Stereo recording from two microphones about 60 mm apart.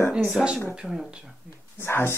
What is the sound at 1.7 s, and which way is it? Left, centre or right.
Speech, left.